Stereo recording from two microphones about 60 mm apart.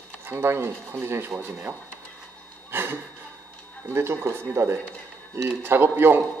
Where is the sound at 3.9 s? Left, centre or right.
Right.